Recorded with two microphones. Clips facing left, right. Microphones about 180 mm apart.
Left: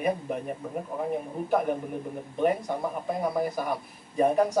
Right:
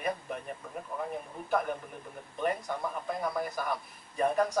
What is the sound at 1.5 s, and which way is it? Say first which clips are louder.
Speech: left 5 dB; 10° left (ahead or behind).